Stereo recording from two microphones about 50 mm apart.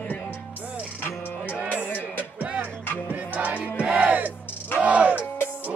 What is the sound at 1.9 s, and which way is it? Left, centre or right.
Music, left.